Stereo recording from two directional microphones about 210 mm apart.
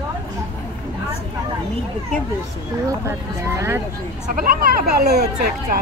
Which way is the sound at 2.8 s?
15° right (ahead or behind).